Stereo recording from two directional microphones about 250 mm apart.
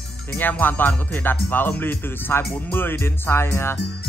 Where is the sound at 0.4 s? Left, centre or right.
Centre.